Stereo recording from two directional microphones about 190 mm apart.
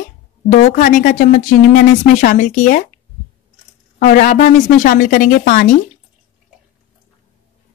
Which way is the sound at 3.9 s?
45° left (ahead or behind).